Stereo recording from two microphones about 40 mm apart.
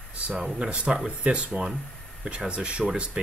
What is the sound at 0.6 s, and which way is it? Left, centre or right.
Speech, right.